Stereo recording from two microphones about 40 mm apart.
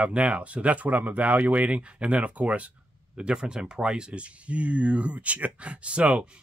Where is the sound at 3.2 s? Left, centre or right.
Right.